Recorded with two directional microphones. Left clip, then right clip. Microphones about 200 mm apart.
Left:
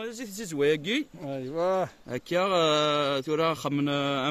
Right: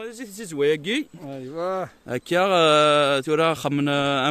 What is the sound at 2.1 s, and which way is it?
Speech, 60° right (ahead or behind).